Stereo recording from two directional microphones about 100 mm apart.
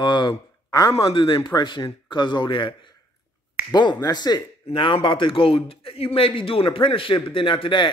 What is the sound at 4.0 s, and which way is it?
Speech, 45° left (ahead or behind).